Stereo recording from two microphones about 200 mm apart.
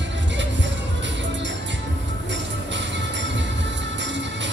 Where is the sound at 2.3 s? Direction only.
65° right (ahead or behind).